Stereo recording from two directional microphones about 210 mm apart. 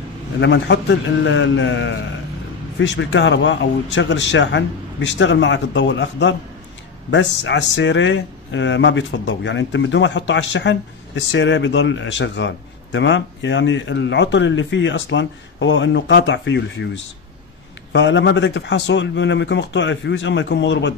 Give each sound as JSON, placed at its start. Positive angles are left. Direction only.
{"t": 0.4, "sound": "speech", "side_deg": 55}